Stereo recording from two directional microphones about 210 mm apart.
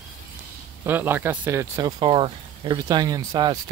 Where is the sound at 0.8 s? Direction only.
10° right (ahead or behind).